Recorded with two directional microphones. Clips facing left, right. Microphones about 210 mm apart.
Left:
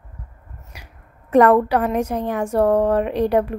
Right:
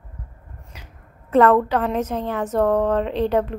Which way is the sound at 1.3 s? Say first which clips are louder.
Left 2 dB; 15° left (ahead or behind).